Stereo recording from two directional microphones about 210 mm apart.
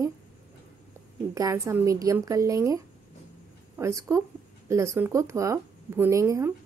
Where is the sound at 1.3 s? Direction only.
15° right (ahead or behind).